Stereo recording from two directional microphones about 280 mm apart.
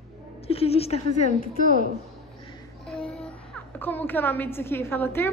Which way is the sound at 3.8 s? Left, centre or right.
Centre.